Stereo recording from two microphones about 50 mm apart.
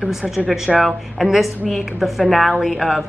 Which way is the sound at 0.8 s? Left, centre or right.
Centre.